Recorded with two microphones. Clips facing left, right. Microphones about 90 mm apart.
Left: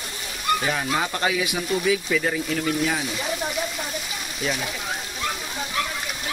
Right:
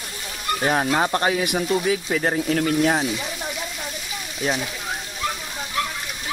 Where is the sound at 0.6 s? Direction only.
40° right (ahead or behind).